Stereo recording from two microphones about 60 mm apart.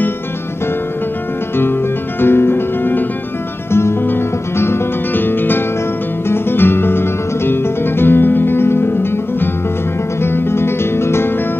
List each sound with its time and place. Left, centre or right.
1.6 s music: left